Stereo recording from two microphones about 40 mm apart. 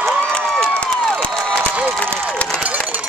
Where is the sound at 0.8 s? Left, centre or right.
Centre.